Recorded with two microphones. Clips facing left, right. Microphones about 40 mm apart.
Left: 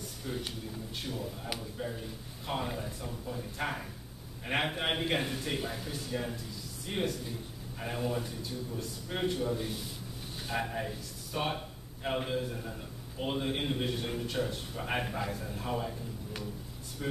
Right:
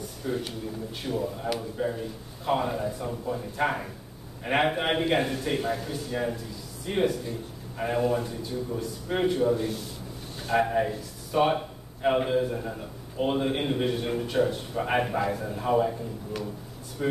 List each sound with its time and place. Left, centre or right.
0.3 s speech: centre
1.0 s a man's voice: centre
2.0 s a man's voice: centre
17.0 s a man's voice: centre